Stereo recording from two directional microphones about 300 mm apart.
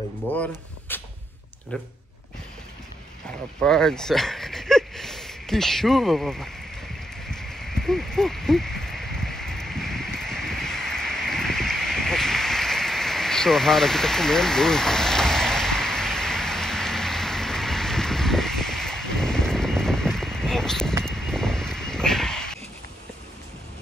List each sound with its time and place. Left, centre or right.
0.3 s speech: centre
3.6 s speech: centre
7.2 s a sound: centre